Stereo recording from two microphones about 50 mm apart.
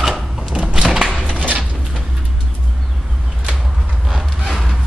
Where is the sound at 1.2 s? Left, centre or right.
Right.